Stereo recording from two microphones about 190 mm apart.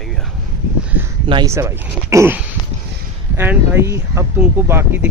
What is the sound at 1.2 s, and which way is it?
Speech, 25° right (ahead or behind).